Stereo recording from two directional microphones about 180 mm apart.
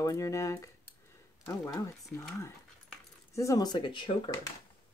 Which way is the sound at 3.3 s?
15° left (ahead or behind).